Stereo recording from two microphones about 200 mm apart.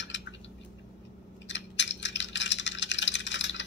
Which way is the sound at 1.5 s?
65° left (ahead or behind).